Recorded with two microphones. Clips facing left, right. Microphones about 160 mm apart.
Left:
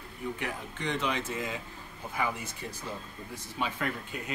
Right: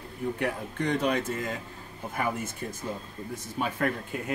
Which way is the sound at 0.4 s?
55° right (ahead or behind).